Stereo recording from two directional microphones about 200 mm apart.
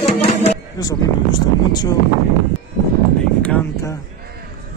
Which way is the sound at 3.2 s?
5° left (ahead or behind).